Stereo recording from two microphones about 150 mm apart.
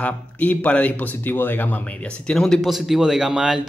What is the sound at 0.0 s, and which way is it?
Speech, 10° left (ahead or behind).